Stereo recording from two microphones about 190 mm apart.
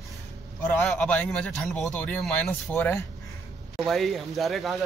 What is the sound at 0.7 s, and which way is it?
Speech, 5° left (ahead or behind).